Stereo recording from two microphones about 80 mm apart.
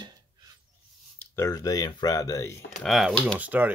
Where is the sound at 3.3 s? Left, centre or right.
Right.